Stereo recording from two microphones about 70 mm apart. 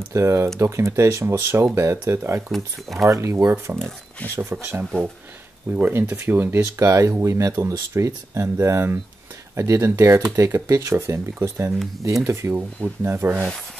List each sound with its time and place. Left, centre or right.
0.1 s speech: right
2.5 s speech: centre
3.1 s speech: right
3.4 s speech: right
6.6 s speech: right